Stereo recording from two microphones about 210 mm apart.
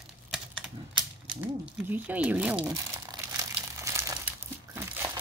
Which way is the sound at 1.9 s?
5° right (ahead or behind).